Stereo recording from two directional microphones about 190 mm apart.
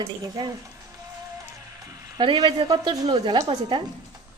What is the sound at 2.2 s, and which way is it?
Speech, 25° right (ahead or behind).